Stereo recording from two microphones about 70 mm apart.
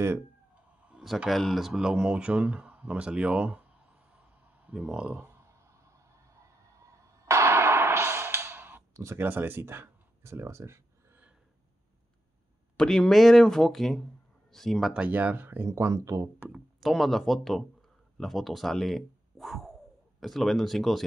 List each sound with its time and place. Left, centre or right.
1.3 s speech: centre
5.1 s a sound: right
8.9 s speech: right
9.3 s speech: right
12.7 s speech: centre
15.0 s speech: right
15.6 s speech: right
16.4 s speech: centre